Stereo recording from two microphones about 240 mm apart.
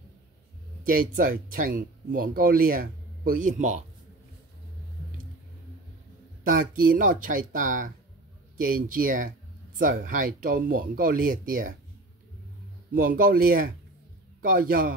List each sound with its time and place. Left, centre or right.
0.9 s speech: right
6.4 s speech: right
12.9 s speech: right